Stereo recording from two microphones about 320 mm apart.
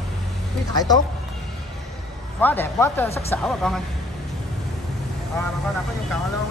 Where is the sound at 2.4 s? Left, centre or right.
Centre.